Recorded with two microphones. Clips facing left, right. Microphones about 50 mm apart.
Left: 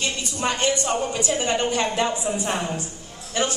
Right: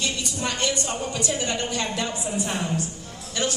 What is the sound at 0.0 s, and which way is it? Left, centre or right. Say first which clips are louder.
A woman's voice: left 2 dB; left.